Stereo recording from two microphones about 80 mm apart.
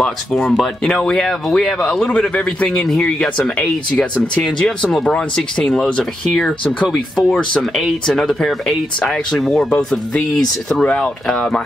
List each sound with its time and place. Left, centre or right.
0.0 s speech: centre
10.7 s speech: centre